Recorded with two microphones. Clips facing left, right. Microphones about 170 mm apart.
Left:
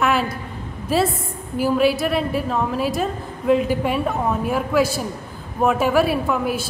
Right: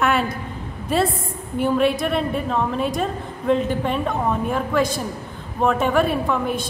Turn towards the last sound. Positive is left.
turn(degrees=5)  # may be behind; listen again after turning